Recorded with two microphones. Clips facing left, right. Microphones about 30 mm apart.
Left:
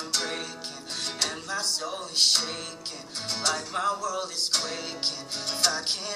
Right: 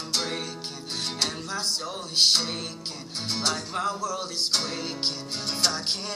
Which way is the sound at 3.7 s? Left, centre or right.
Centre.